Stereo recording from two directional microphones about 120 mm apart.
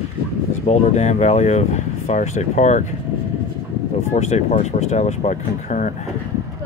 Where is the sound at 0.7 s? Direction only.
65° left (ahead or behind); by 2.9 s 80° left.